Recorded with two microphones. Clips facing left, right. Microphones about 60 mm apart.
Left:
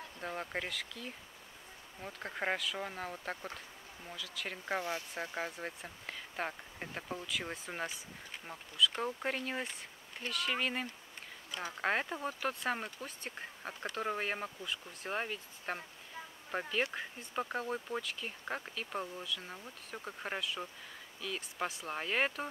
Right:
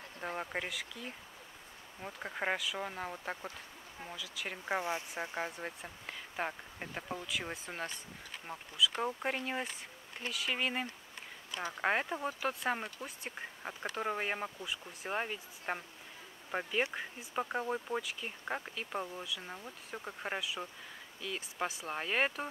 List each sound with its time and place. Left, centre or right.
0.4 s speech: centre
4.6 s speech: centre
5.2 s speech: centre